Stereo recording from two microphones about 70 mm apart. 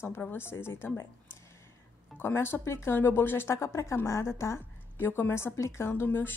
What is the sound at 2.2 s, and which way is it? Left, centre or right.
Speech, left.